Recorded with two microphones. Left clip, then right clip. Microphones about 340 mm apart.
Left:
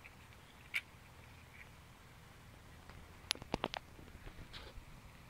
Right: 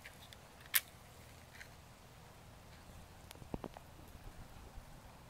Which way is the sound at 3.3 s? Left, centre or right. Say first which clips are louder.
Left 10 dB; left.